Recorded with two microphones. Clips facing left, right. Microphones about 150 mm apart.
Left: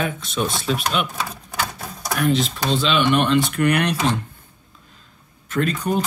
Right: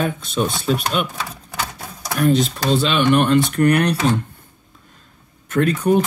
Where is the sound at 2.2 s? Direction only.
45° right (ahead or behind).